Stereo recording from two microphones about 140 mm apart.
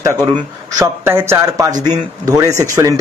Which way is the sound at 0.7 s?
20° right (ahead or behind).